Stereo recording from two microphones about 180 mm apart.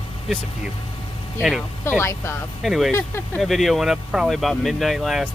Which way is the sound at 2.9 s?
15° left (ahead or behind).